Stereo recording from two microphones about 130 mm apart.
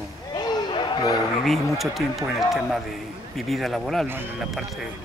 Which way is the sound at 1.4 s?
Centre (ahead or behind).